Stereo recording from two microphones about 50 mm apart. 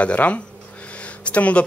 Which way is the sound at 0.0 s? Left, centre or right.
Left.